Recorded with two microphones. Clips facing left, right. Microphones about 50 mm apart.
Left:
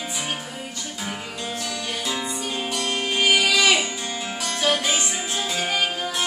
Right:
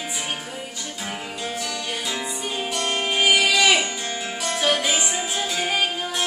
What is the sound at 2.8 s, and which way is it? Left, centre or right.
Music, right.